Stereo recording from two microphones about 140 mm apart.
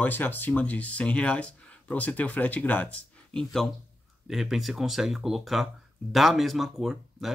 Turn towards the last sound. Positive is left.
turn(degrees=0)  # may be behind; listen again after turning